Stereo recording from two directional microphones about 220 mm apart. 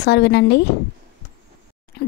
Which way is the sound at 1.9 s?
45° left (ahead or behind).